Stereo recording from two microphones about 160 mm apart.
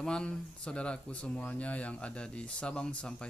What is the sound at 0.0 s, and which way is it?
Speech, 5° left (ahead or behind).